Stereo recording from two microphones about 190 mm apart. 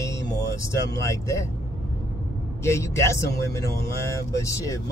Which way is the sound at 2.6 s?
15° left (ahead or behind).